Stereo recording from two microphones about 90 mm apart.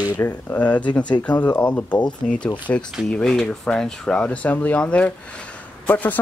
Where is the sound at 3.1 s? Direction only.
5° left (ahead or behind).